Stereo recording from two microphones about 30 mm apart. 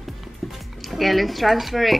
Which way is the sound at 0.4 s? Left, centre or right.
Centre.